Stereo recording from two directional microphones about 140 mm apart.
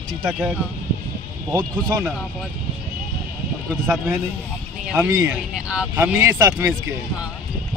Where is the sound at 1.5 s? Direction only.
20° right (ahead or behind).